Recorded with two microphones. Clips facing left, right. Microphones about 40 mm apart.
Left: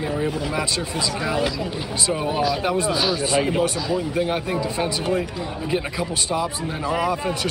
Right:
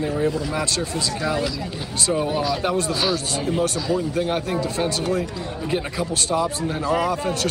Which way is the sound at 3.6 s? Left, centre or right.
Centre.